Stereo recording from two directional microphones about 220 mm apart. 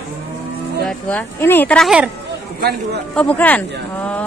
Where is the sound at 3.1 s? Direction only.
5° left (ahead or behind).